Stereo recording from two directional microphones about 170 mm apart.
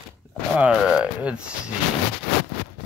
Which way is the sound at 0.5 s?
5° right (ahead or behind).